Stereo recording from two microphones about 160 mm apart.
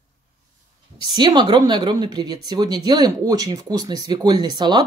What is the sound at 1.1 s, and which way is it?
Speech, 30° right (ahead or behind).